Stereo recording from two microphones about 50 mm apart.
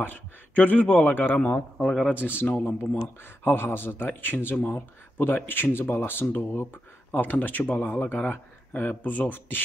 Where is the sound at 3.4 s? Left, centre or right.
Left.